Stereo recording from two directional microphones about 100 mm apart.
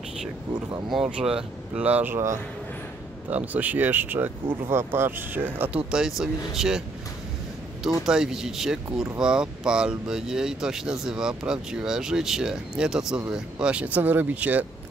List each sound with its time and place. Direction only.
1.1 s speech: 10° right (ahead or behind)
3.3 s speech: 15° right (ahead or behind)
5.9 s speech: 5° right (ahead or behind)
8.0 s speech: 5° right (ahead or behind)